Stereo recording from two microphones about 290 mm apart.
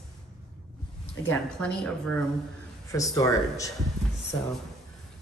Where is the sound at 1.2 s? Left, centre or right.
Centre.